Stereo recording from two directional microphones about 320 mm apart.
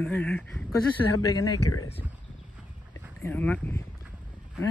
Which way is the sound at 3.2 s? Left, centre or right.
Centre.